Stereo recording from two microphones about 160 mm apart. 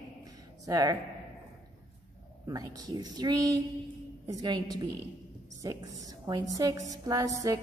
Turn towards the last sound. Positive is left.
turn(degrees=-20)  # may be behind; listen again after turning